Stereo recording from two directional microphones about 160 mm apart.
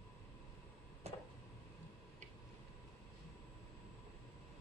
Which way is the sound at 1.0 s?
40° right (ahead or behind).